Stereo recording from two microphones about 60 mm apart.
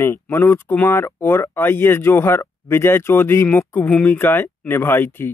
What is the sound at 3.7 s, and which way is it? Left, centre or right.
Speech, left.